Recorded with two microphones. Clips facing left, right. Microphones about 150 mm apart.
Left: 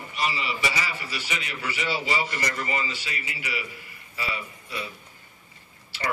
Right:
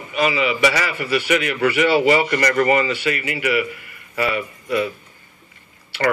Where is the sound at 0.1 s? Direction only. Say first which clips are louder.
Right 10 dB; 65° right (ahead or behind).